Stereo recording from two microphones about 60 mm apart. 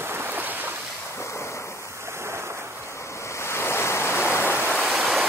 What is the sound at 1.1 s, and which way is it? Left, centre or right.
Ocean, left.